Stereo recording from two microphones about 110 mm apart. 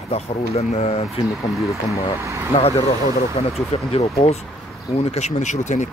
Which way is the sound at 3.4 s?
65° left (ahead or behind).